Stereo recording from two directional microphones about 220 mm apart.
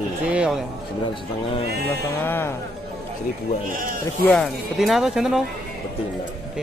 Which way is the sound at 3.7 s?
40° right (ahead or behind).